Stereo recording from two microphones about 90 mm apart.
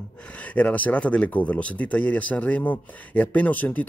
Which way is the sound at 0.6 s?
15° left (ahead or behind).